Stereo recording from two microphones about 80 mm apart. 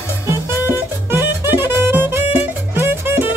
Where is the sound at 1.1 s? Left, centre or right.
Right.